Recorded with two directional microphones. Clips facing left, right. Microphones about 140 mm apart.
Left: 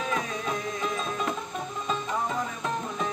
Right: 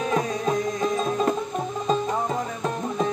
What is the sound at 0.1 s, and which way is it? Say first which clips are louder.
Music: right 7 dB; 35° right (ahead or behind).